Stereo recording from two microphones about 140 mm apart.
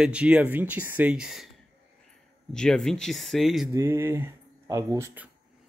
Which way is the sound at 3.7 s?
20° right (ahead or behind).